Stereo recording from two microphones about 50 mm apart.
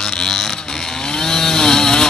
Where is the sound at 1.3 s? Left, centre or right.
Centre.